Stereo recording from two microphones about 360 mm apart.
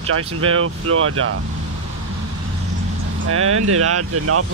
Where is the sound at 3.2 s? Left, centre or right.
Right.